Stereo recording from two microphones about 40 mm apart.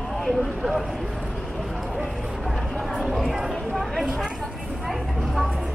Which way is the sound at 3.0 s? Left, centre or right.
Centre.